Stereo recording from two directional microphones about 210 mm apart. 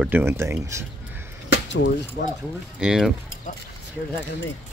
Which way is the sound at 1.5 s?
60° left (ahead or behind).